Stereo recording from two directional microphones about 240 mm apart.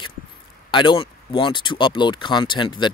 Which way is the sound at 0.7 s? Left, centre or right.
Centre.